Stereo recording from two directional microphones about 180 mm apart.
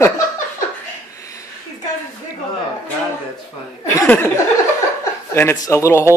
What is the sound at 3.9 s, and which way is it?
Laughter, 10° left (ahead or behind).